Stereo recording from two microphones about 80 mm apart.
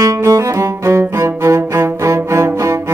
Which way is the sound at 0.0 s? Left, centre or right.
Right.